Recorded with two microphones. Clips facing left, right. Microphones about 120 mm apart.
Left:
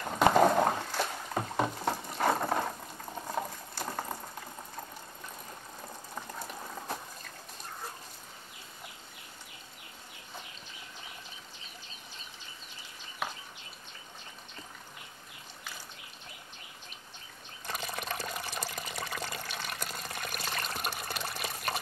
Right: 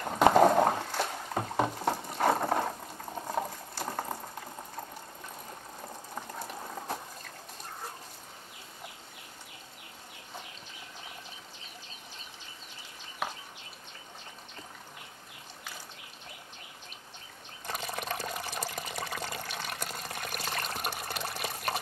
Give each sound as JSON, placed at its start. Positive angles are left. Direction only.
{"t": 0.0, "sound": "a sound", "side_deg": -30}
{"t": 5.8, "sound": "boiling", "side_deg": -25}
{"t": 17.6, "sound": "water", "side_deg": -35}